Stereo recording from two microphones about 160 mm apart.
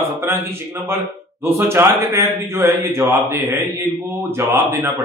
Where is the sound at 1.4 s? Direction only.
15° right (ahead or behind).